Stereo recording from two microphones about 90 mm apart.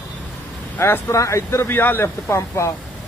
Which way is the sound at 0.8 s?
30° left (ahead or behind).